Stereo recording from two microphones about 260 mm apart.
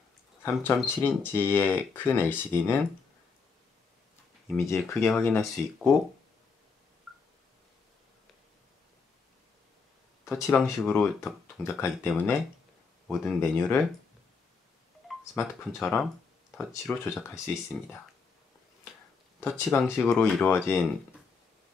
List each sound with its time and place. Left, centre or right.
0.4 s speech: centre
4.5 s speech: centre
10.4 s speech: centre
15.3 s speech: centre
19.4 s speech: centre